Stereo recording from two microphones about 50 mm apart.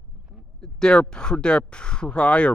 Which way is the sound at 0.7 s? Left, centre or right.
Centre.